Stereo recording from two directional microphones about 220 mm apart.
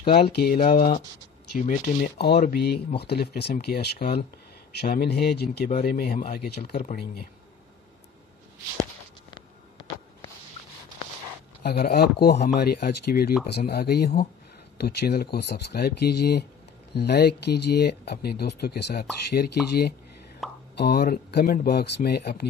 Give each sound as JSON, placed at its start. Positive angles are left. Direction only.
{"t": 0.4, "sound": "speech", "side_deg": 45}
{"t": 5.7, "sound": "speech", "side_deg": 35}
{"t": 11.6, "sound": "speech", "side_deg": 45}